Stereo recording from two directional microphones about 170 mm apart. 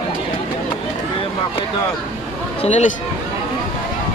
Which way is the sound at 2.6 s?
45° left (ahead or behind).